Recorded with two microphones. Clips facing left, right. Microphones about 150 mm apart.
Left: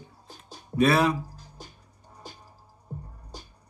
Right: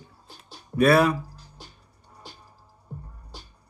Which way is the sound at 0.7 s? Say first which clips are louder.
Right 3 dB; 55° right (ahead or behind).